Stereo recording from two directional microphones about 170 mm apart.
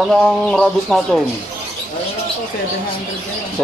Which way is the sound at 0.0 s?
Centre (ahead or behind).